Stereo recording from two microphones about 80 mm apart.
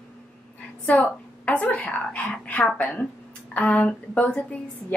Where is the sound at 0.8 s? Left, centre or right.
Centre.